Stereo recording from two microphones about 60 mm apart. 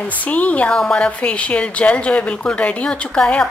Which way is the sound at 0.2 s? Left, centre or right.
Left.